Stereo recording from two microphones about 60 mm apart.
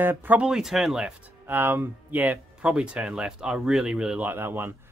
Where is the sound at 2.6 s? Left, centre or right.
Centre.